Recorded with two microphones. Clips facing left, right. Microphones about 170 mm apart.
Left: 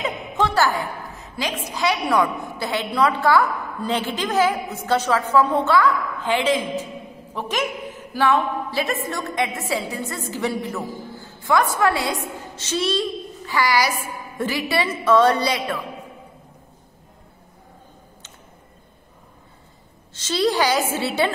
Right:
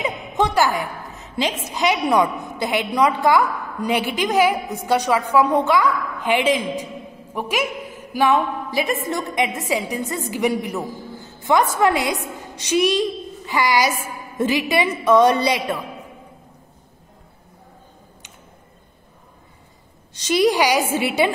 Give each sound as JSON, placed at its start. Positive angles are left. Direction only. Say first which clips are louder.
{"t": 0.0, "sound": "a woman's voice", "louder": "right 2 dB", "side_deg": -15}
{"t": 20.2, "sound": "a woman's voice", "louder": "right 3 dB", "side_deg": -15}